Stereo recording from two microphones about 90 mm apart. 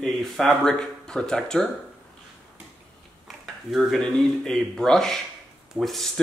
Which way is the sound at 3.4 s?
Centre (ahead or behind).